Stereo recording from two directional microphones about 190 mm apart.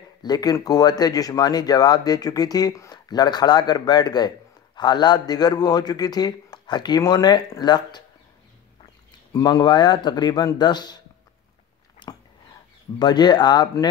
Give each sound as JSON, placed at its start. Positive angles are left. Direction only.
{"t": 0.2, "sound": "speech", "side_deg": 20}
{"t": 9.3, "sound": "speech", "side_deg": 20}
{"t": 12.1, "sound": "a sound", "side_deg": 15}
{"t": 13.0, "sound": "speech", "side_deg": 20}